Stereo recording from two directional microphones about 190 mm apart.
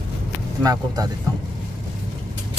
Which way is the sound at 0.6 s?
20° right (ahead or behind).